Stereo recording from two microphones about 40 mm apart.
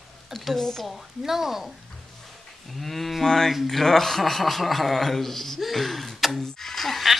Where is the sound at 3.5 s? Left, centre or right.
Centre.